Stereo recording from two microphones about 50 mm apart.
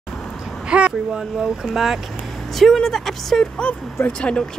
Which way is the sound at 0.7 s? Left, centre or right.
Right.